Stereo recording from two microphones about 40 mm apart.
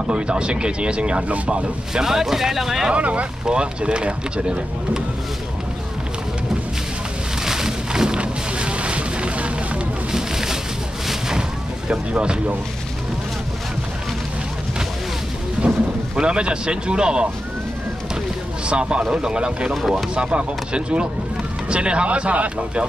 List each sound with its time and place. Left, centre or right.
0.0 s speech: right
2.0 s speech: centre
2.9 s speech: right
7.4 s a sound: centre
8.2 s music: right
10.1 s a sound: centre
11.1 s boat: centre
12.1 s speech: right
15.6 s a sound: right
16.2 s speech: right
18.7 s speech: right
19.7 s speech: centre
20.2 s speech: right